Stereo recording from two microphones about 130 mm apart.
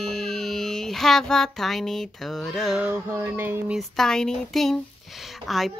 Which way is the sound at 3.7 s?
Centre (ahead or behind).